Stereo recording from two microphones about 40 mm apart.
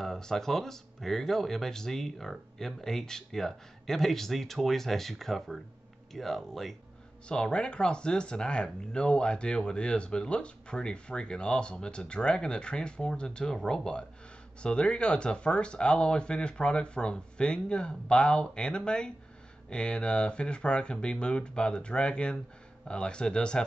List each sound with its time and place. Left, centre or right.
0.0 s speech: centre
7.2 s speech: left